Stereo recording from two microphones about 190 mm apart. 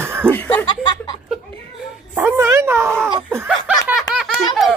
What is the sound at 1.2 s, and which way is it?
Dog, 5° right (ahead or behind).